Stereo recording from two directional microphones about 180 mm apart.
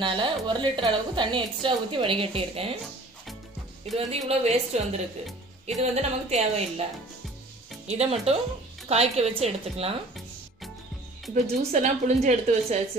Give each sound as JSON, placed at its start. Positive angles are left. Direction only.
{"t": 0.0, "sound": "a woman's voice", "side_deg": -25}
{"t": 3.9, "sound": "a woman's voice", "side_deg": -35}
{"t": 11.3, "sound": "a woman's voice", "side_deg": -40}